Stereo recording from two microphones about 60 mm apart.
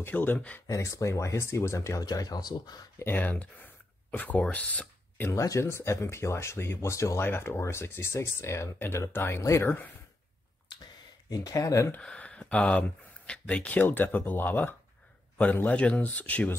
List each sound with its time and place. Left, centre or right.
0.0 s speech: left
0.7 s speech: left
2.0 s speech: left
3.2 s speech: left
5.6 s speech: left
7.2 s speech: left
9.1 s speech: left
9.4 s speech: left
9.7 s speech: left
11.2 s speech: left
12.0 s speech: centre; by 14.8 s left
15.6 s speech: left